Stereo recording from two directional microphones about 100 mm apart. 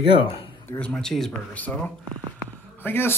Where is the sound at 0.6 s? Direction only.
15° left (ahead or behind).